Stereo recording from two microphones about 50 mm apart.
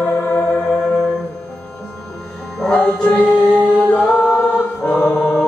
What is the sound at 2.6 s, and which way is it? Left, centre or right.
Music, left.